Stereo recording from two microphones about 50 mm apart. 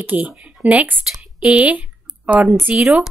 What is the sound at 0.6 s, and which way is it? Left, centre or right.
Speech, right.